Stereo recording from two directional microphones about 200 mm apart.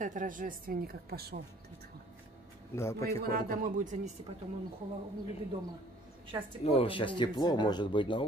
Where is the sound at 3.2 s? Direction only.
50° right (ahead or behind).